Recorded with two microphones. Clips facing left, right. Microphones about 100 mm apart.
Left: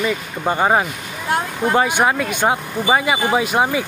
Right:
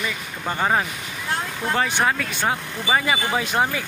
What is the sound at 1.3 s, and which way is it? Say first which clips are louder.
Speech: left 7 dB; 50° left (ahead or behind).